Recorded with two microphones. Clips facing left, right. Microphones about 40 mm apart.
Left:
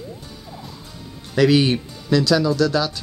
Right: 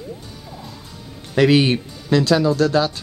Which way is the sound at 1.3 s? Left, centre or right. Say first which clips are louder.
Right 1 dB; right.